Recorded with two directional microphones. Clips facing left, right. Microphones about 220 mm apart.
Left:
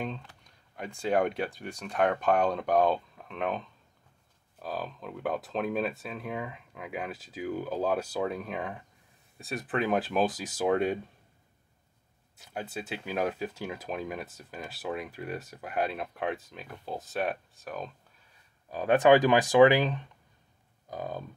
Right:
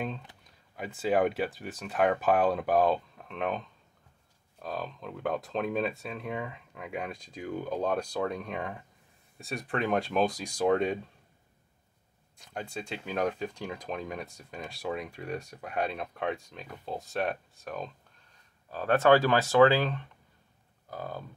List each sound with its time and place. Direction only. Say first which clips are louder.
0.4 s speech: right 1 dB; 5° right (ahead or behind)
12.4 s speech: left 1 dB; 5° left (ahead or behind)
18.7 s speech: left 2 dB; 15° left (ahead or behind)